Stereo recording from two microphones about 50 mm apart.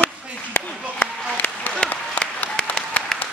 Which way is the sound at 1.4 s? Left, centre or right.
Left.